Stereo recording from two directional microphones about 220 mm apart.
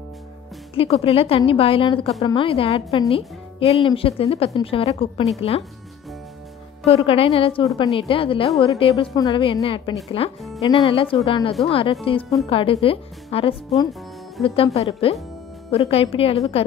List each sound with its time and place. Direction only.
0.7 s a woman's voice: 25° left (ahead or behind)
6.9 s a woman's voice: 25° left (ahead or behind)